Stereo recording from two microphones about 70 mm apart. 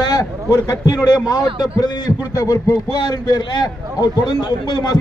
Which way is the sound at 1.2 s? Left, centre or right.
Left.